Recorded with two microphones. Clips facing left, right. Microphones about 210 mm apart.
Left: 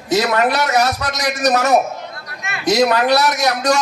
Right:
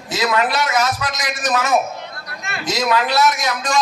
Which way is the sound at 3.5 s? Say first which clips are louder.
Left 4 dB; 70° left (ahead or behind).